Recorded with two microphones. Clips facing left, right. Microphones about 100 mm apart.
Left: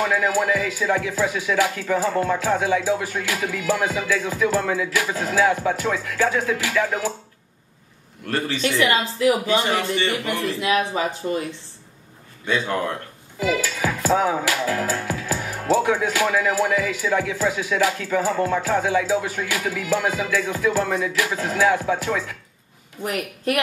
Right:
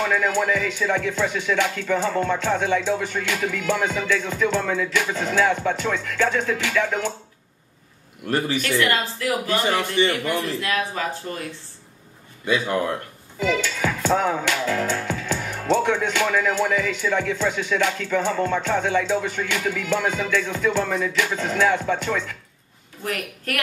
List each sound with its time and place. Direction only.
0.0 s music: 5° left (ahead or behind)
8.3 s speech: 10° right (ahead or behind)
8.5 s speech: 20° left (ahead or behind)
12.4 s speech: 10° right (ahead or behind)
13.4 s music: 5° left (ahead or behind)
23.0 s speech: 20° left (ahead or behind)